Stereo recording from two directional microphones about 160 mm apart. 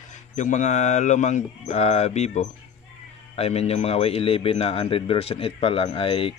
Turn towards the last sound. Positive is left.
turn(degrees=35)  # may be behind; listen again after turning